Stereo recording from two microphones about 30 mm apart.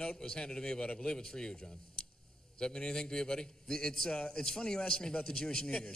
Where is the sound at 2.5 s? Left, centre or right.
Left.